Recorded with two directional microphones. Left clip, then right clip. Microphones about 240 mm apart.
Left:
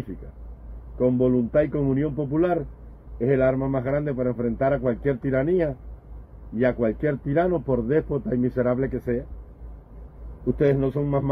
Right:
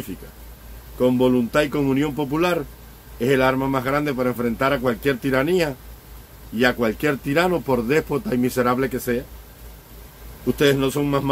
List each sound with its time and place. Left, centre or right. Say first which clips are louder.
0.9 s a man's voice: right 3 dB; centre
10.6 s a man's voice: right 3 dB; centre